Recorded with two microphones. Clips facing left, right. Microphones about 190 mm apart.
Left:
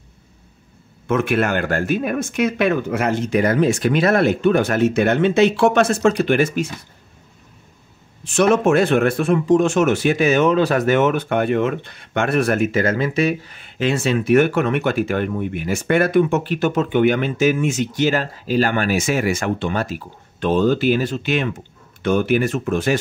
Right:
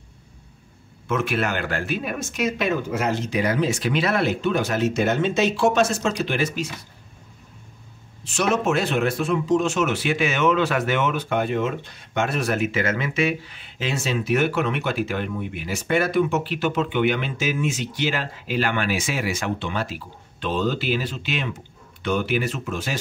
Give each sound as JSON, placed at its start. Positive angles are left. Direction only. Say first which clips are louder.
{"t": 1.0, "sound": "a man's voice", "louder": "left 5 dB", "side_deg": 55}
{"t": 8.2, "sound": "a man's voice", "louder": "left 7 dB", "side_deg": 55}